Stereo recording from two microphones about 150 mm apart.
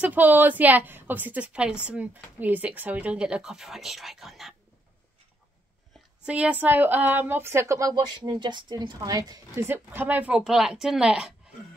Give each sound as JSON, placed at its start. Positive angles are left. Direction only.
{"t": 0.0, "sound": "speech", "side_deg": -10}
{"t": 6.2, "sound": "speech", "side_deg": -10}
{"t": 9.7, "sound": "a woman's voice", "side_deg": -10}